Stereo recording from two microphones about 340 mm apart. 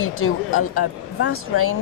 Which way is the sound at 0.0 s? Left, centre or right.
Left.